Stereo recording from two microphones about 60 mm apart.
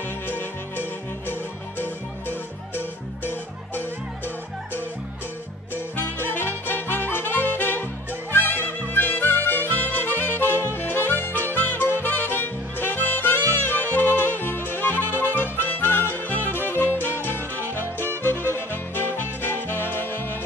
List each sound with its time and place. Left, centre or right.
0.3 s music: left
5.9 s music: left